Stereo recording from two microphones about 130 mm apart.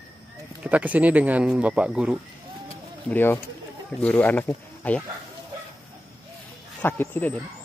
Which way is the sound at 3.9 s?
10° left (ahead or behind).